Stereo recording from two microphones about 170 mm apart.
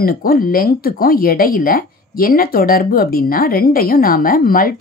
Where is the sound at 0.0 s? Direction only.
60° left (ahead or behind).